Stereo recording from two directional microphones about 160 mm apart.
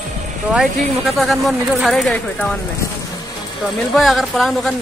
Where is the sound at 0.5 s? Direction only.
Centre (ahead or behind).